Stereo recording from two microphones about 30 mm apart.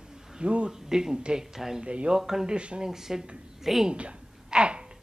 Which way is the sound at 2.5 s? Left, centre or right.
Right.